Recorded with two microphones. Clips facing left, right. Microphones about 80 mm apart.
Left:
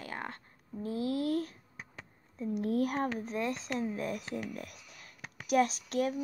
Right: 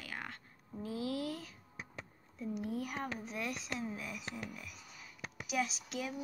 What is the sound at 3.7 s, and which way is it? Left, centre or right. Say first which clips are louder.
Speech: left 7 dB; left.